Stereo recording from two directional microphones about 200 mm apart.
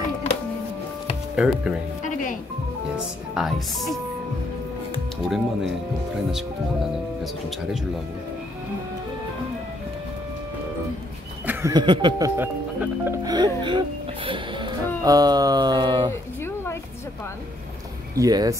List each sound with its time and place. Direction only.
1.3 s speech: 5° right (ahead or behind)
3.3 s speech: centre (ahead or behind)
5.3 s speech: centre (ahead or behind)
11.4 s a sound: 20° right (ahead or behind)
12.4 s speech: 15° right (ahead or behind)
16.1 s a sound: 15° left (ahead or behind)
18.1 s speech: 20° right (ahead or behind)